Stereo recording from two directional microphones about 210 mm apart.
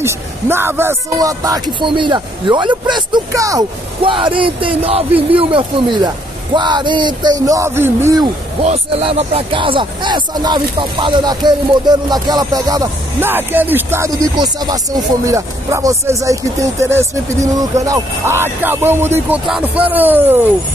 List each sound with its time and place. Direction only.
0.0 s speech: 10° right (ahead or behind)
8.6 s speech: 25° right (ahead or behind); by 20.3 s 10° right (ahead or behind)